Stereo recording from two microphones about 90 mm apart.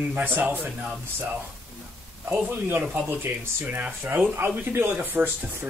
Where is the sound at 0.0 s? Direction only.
20° right (ahead or behind).